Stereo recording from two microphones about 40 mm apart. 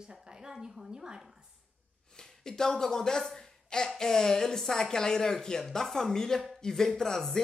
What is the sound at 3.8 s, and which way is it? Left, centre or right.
Speech, centre.